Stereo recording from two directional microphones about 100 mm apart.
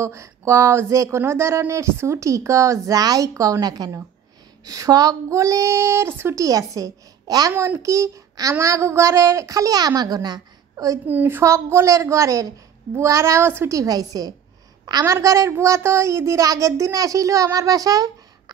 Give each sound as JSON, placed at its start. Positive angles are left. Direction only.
{"t": 0.0, "sound": "speech", "side_deg": -30}
{"t": 11.1, "sound": "a woman's voice", "side_deg": -20}
{"t": 15.1, "sound": "speech", "side_deg": -30}